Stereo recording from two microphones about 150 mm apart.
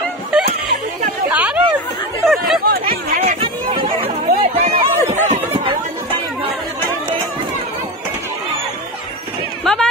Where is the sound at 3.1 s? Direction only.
55° right (ahead or behind).